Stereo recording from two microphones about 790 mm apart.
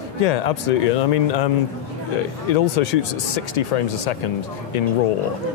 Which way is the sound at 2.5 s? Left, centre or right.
Left.